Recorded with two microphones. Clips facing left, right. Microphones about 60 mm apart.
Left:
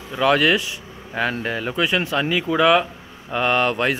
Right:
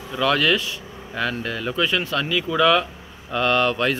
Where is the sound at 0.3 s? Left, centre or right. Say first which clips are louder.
Left 3 dB; left.